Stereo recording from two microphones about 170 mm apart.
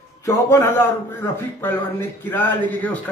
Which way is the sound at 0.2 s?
15° left (ahead or behind).